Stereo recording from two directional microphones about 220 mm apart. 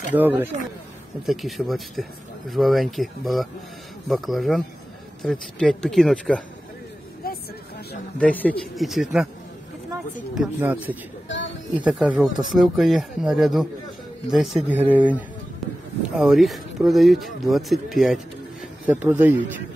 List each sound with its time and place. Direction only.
0.1 s speech: 10° right (ahead or behind)
7.2 s vehicle: 45° left (ahead or behind)
8.2 s speech: 5° left (ahead or behind)
10.3 s speech: 5° right (ahead or behind)
11.2 s a sound: 60° left (ahead or behind)
11.7 s speech: 5° right (ahead or behind)
15.6 s a sound: centre (ahead or behind)
16.2 s speech: centre (ahead or behind)